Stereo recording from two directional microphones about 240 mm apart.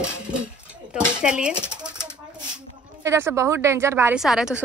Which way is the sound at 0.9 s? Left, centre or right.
Centre.